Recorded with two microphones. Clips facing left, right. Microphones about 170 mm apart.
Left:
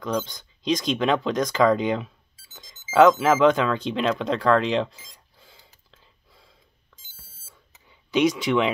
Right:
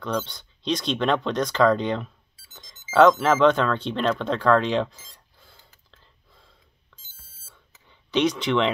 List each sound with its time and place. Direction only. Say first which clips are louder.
0.0 s speech: left 1 dB; 10° left (ahead or behind)
2.5 s music: even; 5° left (ahead or behind)
7.9 s speech: left 2 dB; 10° left (ahead or behind)